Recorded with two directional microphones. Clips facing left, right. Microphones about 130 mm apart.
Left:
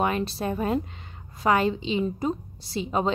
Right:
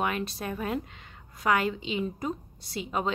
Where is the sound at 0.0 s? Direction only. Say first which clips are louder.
Left 5 dB; 30° left (ahead or behind).